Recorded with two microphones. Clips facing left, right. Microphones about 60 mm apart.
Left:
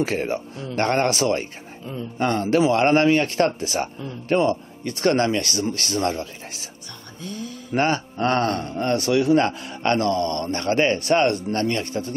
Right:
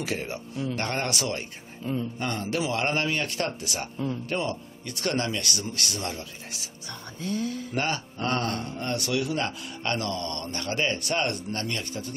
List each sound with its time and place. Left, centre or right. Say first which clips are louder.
0.0 s a man's voice: left 8 dB; left
7.7 s a man's voice: left 12 dB; left